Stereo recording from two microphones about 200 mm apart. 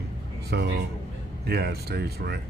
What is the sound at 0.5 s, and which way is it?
A man's voice, 55° right (ahead or behind).